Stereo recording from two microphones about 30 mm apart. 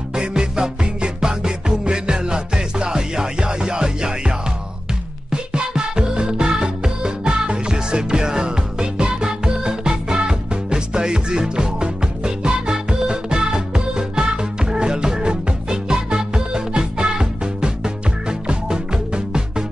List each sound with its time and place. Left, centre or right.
0.1 s music: right
5.3 s music: right